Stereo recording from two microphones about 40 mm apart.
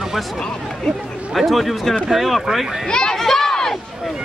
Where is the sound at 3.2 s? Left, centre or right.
Centre.